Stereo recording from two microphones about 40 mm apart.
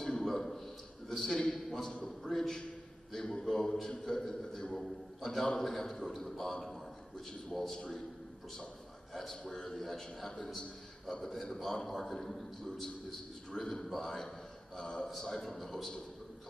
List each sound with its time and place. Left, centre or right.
0.0 s a sound: centre
1.5 s a man's voice: centre
6.5 s a sound: centre
7.5 s a man's voice: centre
9.1 s a man's voice: centre
9.4 s a man's voice: centre
15.0 s a man's voice: centre